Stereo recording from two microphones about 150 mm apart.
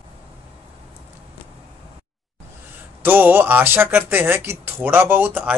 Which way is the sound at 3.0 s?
15° right (ahead or behind).